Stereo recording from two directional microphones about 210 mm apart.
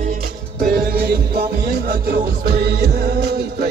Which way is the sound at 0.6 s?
45° right (ahead or behind).